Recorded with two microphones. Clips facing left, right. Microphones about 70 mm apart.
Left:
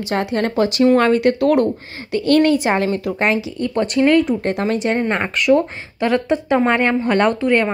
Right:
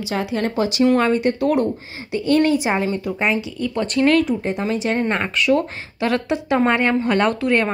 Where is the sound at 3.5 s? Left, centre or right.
Left.